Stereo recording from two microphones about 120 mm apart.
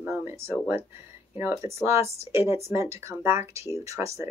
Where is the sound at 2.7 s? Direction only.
25° right (ahead or behind).